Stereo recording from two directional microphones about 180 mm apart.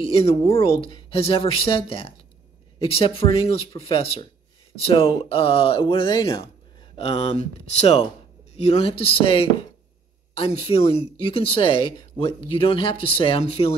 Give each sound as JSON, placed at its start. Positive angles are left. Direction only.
{"t": 0.0, "sound": "speech", "side_deg": 30}